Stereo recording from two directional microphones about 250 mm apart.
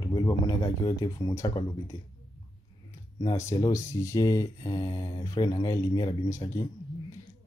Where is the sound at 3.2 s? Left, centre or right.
Centre.